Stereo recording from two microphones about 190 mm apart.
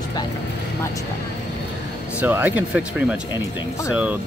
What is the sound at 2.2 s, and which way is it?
Speech, 10° right (ahead or behind).